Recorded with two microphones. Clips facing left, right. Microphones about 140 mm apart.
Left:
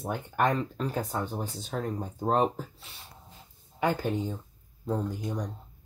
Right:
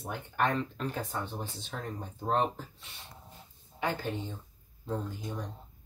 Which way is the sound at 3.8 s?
45° left (ahead or behind).